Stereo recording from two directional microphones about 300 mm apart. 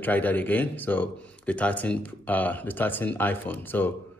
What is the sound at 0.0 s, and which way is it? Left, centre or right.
Speech, centre.